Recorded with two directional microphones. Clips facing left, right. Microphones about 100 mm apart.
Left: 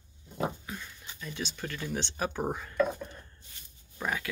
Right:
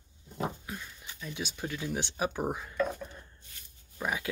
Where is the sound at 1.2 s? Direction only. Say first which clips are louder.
Even; 5° right (ahead or behind).